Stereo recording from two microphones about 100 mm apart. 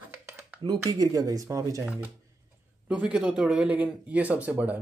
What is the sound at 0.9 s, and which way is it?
Speech, 40° right (ahead or behind).